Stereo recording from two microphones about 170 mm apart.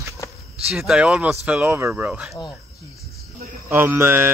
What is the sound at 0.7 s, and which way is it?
Speech, 5° right (ahead or behind).